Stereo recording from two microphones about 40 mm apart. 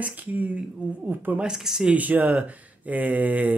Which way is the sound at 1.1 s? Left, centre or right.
Right.